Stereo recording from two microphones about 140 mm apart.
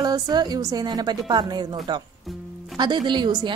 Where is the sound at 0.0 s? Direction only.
30° right (ahead or behind).